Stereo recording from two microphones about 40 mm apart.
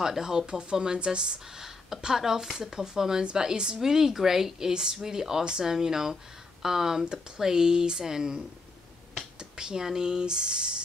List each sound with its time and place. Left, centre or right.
0.0 s speech: centre